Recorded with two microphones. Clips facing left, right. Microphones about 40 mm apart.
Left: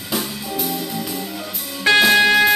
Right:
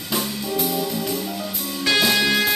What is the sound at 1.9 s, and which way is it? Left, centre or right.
Music, left.